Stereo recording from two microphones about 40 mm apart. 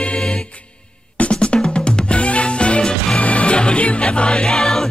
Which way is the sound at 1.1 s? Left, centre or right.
Left.